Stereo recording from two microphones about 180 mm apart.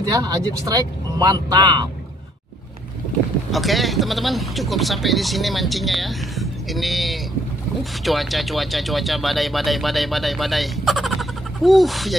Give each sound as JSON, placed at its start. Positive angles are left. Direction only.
{"t": 0.1, "sound": "speech", "side_deg": -20}
{"t": 3.5, "sound": "speech", "side_deg": 0}